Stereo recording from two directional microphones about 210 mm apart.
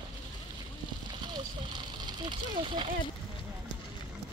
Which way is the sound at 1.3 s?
20° right (ahead or behind).